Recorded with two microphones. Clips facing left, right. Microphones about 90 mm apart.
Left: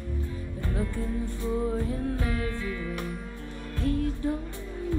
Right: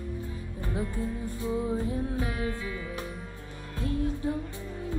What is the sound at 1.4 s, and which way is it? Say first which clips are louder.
Music: even; 15° right (ahead or behind).